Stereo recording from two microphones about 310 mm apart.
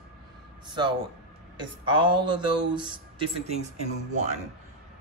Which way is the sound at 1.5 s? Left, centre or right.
Centre.